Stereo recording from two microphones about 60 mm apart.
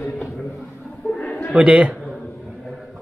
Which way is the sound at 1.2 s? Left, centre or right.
Left.